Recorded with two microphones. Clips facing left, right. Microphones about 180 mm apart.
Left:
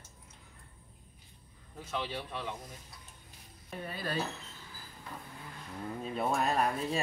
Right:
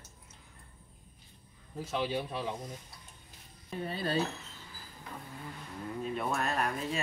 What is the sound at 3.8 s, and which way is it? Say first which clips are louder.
Speech: right 4 dB; 30° right (ahead or behind).